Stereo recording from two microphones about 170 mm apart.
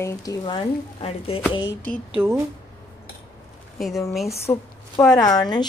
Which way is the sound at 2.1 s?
15° right (ahead or behind).